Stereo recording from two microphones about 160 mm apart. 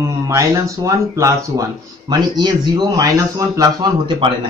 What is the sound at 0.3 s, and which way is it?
Speech, 20° right (ahead or behind).